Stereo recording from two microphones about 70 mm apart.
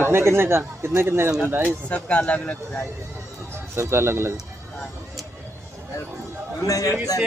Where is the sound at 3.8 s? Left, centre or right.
Right.